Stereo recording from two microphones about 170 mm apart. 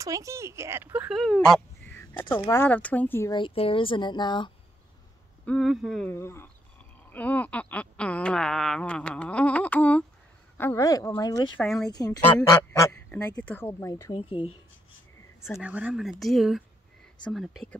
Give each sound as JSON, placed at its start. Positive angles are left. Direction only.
{"t": 0.0, "sound": "speech", "side_deg": -20}
{"t": 3.3, "sound": "speech", "side_deg": 30}
{"t": 5.4, "sound": "speech", "side_deg": 5}
{"t": 6.0, "sound": "speech", "side_deg": 15}
{"t": 11.5, "sound": "speech", "side_deg": 0}
{"t": 11.9, "sound": "speech", "side_deg": 25}
{"t": 14.1, "sound": "speech", "side_deg": 30}
{"t": 15.6, "sound": "speech", "side_deg": -5}